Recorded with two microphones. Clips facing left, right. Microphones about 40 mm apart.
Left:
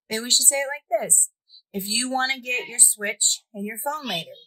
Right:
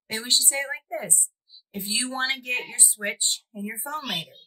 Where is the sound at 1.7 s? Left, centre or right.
Right.